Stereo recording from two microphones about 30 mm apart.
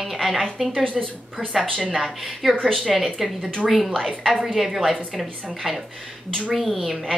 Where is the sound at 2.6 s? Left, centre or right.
Centre.